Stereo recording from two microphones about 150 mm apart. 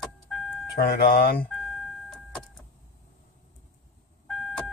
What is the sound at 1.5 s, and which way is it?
Vehicle, centre (ahead or behind).